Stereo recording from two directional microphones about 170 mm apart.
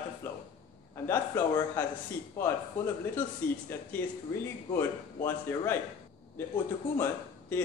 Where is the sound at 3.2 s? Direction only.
10° left (ahead or behind).